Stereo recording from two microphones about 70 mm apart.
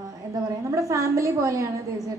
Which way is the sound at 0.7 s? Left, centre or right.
Right.